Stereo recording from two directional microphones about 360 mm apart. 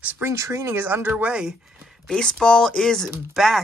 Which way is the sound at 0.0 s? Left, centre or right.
Centre.